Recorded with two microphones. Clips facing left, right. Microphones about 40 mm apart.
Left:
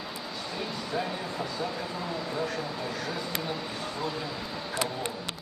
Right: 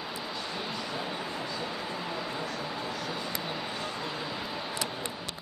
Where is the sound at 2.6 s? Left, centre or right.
Centre.